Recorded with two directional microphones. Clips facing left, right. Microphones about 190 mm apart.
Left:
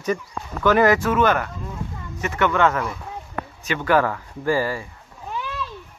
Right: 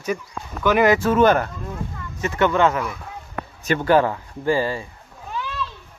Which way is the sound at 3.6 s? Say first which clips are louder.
Right 4 dB; 40° right (ahead or behind).